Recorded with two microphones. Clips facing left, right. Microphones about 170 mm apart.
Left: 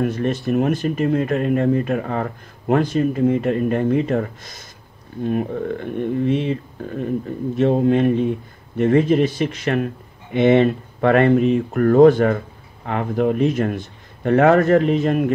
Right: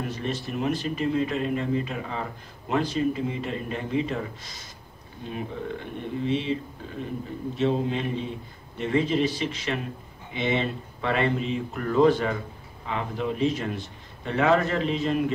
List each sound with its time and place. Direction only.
0.0 s speech: 55° left (ahead or behind)